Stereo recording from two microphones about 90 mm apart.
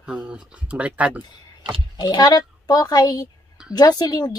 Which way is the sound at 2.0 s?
50° left (ahead or behind).